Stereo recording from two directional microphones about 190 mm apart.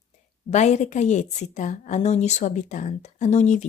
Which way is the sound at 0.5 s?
40° left (ahead or behind).